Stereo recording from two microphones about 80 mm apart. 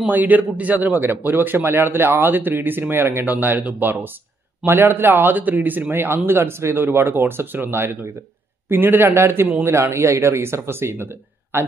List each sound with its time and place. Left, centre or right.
0.0 s a man's voice: right